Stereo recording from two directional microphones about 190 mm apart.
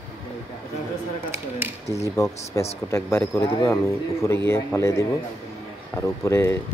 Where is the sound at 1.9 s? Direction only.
15° left (ahead or behind).